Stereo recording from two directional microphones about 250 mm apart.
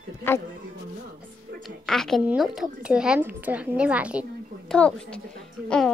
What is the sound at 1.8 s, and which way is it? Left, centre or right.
A woman's voice, centre.